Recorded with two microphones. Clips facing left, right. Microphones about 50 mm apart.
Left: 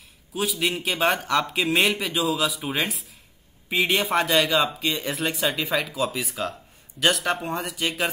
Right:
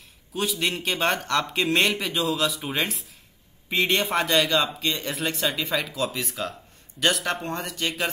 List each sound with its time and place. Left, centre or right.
0.3 s speech: centre